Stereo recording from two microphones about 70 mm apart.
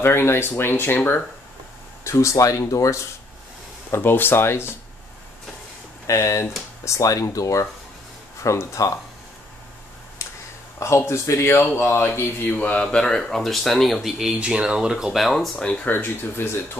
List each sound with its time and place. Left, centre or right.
0.0 s speech: left
2.0 s speech: left
3.9 s speech: left
6.0 s speech: left
10.8 s speech: left
12.9 s speech: centre
15.5 s speech: centre
15.9 s speech: left